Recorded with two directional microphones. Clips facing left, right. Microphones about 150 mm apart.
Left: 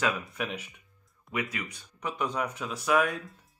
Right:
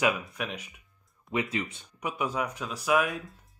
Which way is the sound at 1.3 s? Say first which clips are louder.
Right 4 dB; 25° right (ahead or behind).